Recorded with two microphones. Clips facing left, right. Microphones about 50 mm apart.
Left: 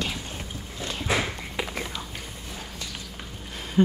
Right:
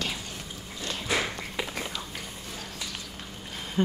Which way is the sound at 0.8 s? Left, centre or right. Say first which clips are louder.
Left 2 dB; left.